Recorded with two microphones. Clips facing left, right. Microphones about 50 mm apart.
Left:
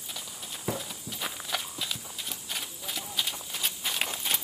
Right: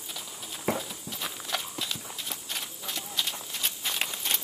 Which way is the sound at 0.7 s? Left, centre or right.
Centre.